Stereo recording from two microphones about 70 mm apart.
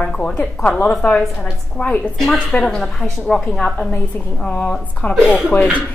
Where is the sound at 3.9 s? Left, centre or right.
Left.